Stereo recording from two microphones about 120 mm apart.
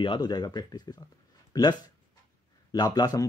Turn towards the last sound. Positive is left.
turn(degrees=35)  # may be behind; listen again after turning